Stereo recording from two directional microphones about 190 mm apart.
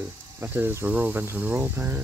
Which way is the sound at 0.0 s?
10° right (ahead or behind).